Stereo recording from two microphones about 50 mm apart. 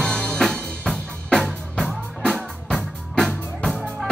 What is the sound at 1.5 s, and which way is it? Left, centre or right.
Music, centre.